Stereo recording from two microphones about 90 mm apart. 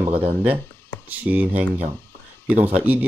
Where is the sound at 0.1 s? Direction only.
90° right.